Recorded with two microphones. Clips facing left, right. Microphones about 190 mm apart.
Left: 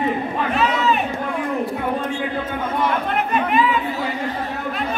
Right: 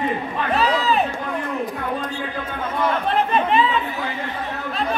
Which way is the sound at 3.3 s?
30° right (ahead or behind).